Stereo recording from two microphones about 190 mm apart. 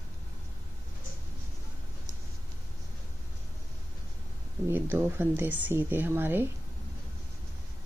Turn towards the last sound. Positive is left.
turn(degrees=-10)  # may be behind; listen again after turning